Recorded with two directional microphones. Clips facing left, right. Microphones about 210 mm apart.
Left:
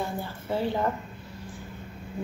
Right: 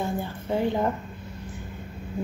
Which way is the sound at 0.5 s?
15° right (ahead or behind).